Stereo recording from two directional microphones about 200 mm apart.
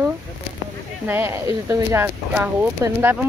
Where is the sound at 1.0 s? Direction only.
10° right (ahead or behind).